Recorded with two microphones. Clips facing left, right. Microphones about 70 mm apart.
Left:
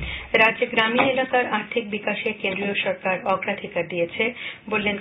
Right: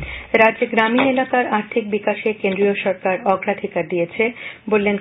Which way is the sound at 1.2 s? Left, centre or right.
Centre.